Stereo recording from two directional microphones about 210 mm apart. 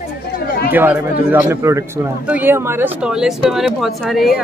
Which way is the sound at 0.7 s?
10° right (ahead or behind).